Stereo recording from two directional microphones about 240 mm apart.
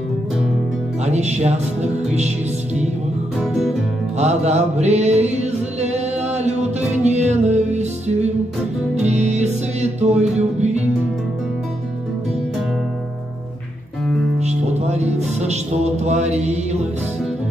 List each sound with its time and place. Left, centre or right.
1.0 s speech: right
3.3 s music: centre
4.2 s mantra: right
8.9 s music: right
14.4 s music: right